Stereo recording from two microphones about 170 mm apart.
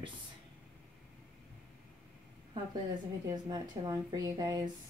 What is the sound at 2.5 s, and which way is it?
A woman's voice, 25° right (ahead or behind).